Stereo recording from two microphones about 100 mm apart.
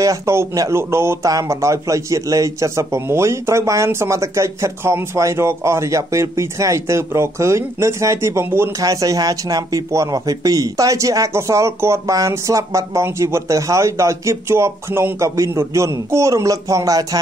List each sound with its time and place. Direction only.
0.0 s a man's voice: 30° right (ahead or behind)